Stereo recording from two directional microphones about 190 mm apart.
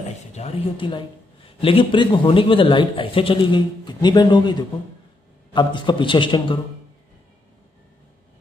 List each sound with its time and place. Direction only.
0.3 s speech: 30° left (ahead or behind)